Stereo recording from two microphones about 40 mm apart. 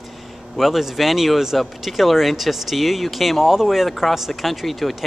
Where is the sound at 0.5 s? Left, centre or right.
Centre.